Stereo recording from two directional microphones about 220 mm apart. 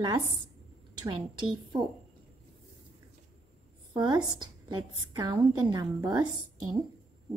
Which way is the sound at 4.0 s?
20° right (ahead or behind).